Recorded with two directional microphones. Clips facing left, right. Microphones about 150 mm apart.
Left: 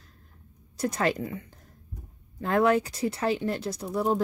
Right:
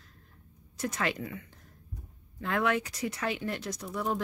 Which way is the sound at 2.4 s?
35° left (ahead or behind).